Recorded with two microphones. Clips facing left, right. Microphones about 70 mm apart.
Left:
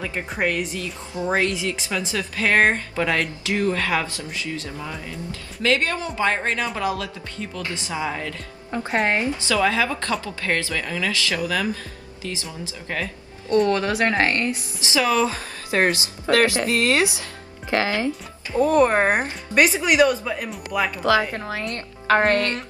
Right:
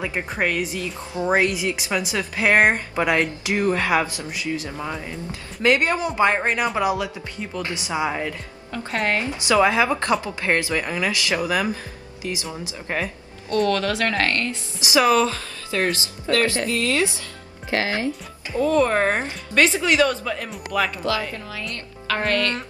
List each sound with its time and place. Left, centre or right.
0.3 s speech: centre
1.1 s speech: right
9.0 s speech: left
9.5 s speech: right
13.7 s speech: left
14.8 s speech: centre
15.1 s speech: left
16.4 s speech: left
18.5 s speech: left; by 20.9 s centre
21.0 s speech: left